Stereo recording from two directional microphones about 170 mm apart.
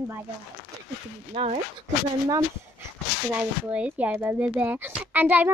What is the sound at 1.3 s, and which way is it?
Speech, 40° right (ahead or behind).